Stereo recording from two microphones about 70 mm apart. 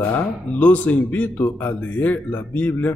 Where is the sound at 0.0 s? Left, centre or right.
Left.